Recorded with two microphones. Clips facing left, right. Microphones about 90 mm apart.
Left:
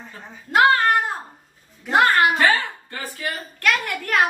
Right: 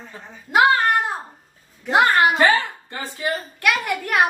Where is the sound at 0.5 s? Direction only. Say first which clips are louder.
Even; 10° right (ahead or behind).